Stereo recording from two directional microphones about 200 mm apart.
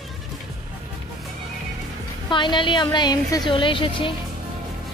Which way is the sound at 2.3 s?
25° left (ahead or behind).